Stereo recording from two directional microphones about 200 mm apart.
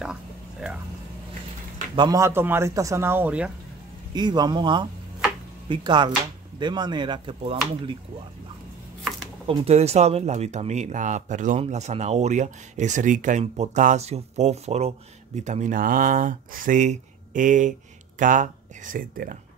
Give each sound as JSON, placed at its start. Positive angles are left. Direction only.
{"t": 0.0, "sound": "a sound", "side_deg": -5}
{"t": 2.0, "sound": "speech", "side_deg": -20}
{"t": 4.1, "sound": "speech", "side_deg": -20}
{"t": 9.5, "sound": "speech", "side_deg": -30}